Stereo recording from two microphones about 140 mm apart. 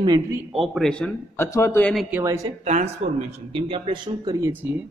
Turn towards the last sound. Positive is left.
turn(degrees=-10)  # may be behind; listen again after turning